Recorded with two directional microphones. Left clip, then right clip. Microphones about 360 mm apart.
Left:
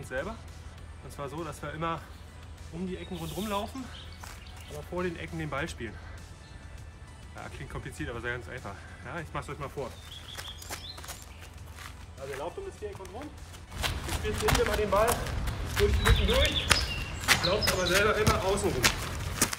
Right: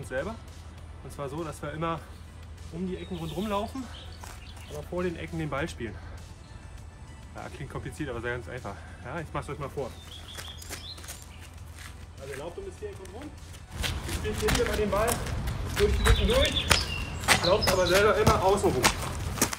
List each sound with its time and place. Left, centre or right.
0.0 s speech: centre
4.7 s speech: centre
7.3 s speech: centre
10.3 s a sound: centre
11.8 s zipper: centre
13.7 s speech: centre